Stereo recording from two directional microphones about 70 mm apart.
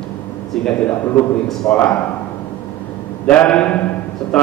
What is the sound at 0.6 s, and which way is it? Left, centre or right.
Speech, centre.